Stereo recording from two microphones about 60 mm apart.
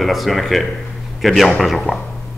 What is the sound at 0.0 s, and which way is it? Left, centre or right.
A man's voice, centre.